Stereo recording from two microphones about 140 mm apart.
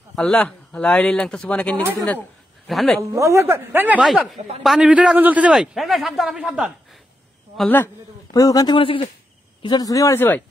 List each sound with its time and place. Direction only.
0.1 s speech: 5° left (ahead or behind)
2.0 s a sound: 10° left (ahead or behind)
2.7 s speech: centre (ahead or behind)
3.0 s a man's voice: 20° right (ahead or behind)
7.5 s speech: 10° left (ahead or behind)
8.3 s speech: 25° left (ahead or behind)